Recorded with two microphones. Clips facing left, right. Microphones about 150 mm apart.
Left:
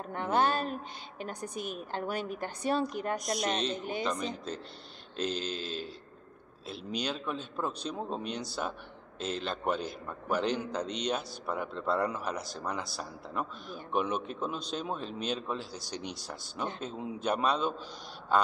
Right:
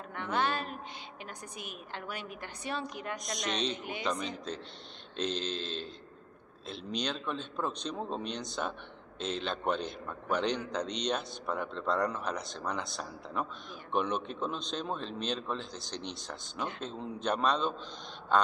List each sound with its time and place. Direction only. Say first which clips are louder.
0.1 s a sound: left 4 dB; 40° left (ahead or behind)
1.2 s a woman's voice: left 9 dB; 40° left (ahead or behind)
3.5 s a man's voice: left 2 dB; centre (ahead or behind)
18.3 s mantra: even; 5° left (ahead or behind)